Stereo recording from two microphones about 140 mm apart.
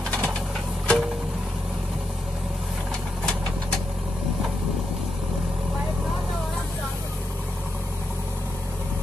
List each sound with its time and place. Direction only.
0.1 s typewriter: 10° left (ahead or behind)
0.8 s music: centre (ahead or behind)